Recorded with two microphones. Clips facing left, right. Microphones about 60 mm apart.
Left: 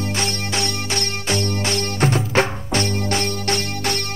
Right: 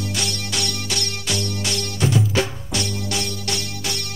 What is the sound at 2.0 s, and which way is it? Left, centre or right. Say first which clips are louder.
Music: left 2 dB; left.